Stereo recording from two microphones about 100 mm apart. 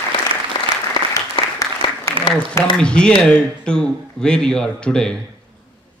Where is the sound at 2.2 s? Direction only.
65° right (ahead or behind).